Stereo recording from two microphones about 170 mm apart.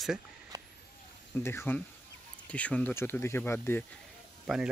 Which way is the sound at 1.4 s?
15° left (ahead or behind).